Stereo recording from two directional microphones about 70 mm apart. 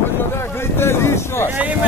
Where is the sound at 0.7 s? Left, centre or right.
Left.